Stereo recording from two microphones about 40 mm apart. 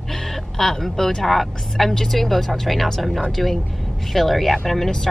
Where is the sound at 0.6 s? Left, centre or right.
Centre.